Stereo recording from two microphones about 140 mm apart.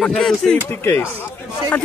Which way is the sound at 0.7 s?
15° left (ahead or behind).